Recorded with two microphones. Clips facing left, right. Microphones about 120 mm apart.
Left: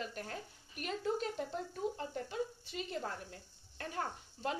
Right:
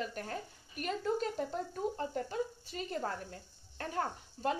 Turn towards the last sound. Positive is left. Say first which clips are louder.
# right 4 dB
turn(degrees=-40)  # may be behind; listen again after turning